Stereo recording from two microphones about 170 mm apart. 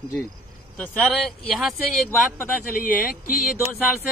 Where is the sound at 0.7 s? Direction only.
5° left (ahead or behind).